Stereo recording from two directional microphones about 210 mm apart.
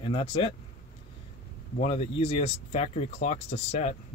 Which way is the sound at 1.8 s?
30° left (ahead or behind).